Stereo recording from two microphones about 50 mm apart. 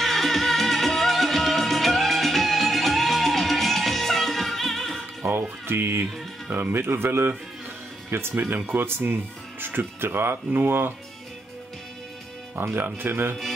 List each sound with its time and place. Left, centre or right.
0.0 s music: centre
5.2 s music: right
5.7 s speech: right
12.5 s speech: right